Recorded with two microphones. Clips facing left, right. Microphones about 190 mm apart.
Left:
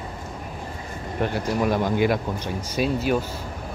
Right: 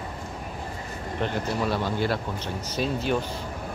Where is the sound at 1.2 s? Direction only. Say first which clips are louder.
Left 4 dB; 10° left (ahead or behind).